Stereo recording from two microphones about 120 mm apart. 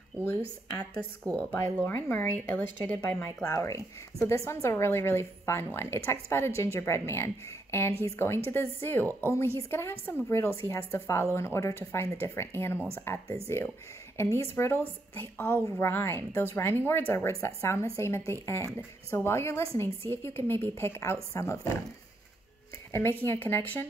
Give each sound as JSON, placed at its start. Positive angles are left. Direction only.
{"t": 0.7, "sound": "a woman's voice", "side_deg": 10}
{"t": 3.4, "sound": "a woman's voice", "side_deg": 25}
{"t": 22.9, "sound": "a woman's voice", "side_deg": 20}